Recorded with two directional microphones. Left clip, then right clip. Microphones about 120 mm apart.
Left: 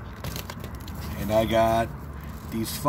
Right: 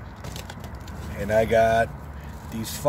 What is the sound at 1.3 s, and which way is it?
Speech, 35° right (ahead or behind).